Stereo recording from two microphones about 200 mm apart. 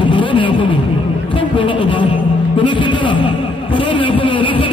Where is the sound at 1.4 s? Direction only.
25° left (ahead or behind).